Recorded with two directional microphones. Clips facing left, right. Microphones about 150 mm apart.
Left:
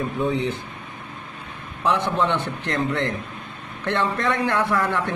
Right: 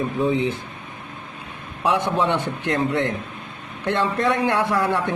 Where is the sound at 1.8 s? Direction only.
20° right (ahead or behind).